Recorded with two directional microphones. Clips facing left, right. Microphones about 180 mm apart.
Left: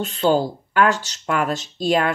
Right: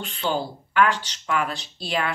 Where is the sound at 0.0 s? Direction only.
40° left (ahead or behind).